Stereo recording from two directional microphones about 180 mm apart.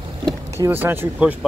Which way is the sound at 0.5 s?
15° right (ahead or behind).